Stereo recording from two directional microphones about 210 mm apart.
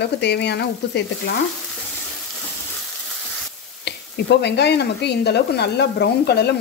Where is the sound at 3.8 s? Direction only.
55° left (ahead or behind).